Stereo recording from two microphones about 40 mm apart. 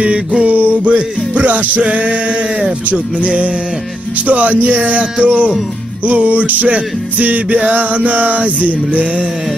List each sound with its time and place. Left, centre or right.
0.5 s music: right